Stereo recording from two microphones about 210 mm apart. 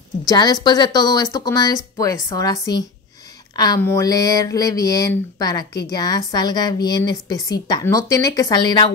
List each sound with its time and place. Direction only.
0.3 s a woman's voice: 20° left (ahead or behind)